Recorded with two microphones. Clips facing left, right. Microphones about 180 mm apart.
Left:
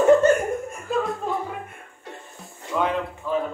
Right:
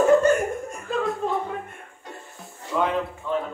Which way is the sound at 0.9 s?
Centre (ahead or behind).